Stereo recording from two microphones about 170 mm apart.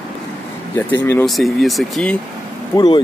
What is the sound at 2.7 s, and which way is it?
Speech, 30° left (ahead or behind).